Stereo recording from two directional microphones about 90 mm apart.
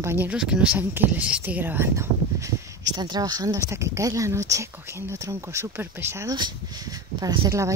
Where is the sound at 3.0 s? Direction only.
50° right (ahead or behind); by 6.2 s 30° right (ahead or behind).